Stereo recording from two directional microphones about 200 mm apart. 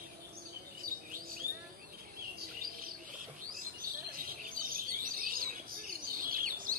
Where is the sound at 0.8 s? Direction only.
45° right (ahead or behind).